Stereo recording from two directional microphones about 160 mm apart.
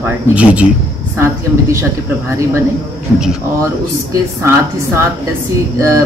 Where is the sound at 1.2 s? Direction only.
20° right (ahead or behind).